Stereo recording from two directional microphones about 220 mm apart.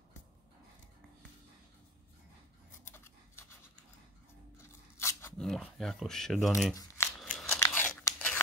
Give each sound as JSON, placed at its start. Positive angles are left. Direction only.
{"t": 2.9, "sound": "scissors", "side_deg": 10}
{"t": 4.6, "sound": "scissors", "side_deg": 10}
{"t": 5.4, "sound": "speech", "side_deg": 0}
{"t": 6.7, "sound": "speech", "side_deg": 15}
{"t": 7.2, "sound": "scissors", "side_deg": 0}
{"t": 7.5, "sound": "crunch", "side_deg": 10}